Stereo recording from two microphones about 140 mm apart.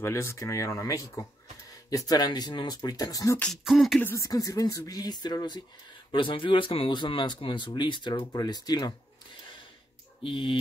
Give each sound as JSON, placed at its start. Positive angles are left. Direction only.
{"t": 0.0, "sound": "speech", "side_deg": 20}
{"t": 3.3, "sound": "beatboxing", "side_deg": 5}
{"t": 4.0, "sound": "speech", "side_deg": 20}
{"t": 10.2, "sound": "speech", "side_deg": 35}